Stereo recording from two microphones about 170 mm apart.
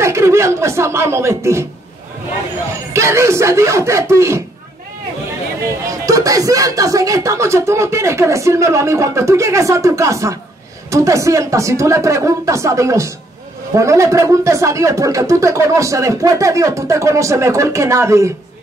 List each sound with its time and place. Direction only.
0.0 s speech: 15° right (ahead or behind)
2.9 s speech: 15° right (ahead or behind)
5.9 s speech: 20° right (ahead or behind)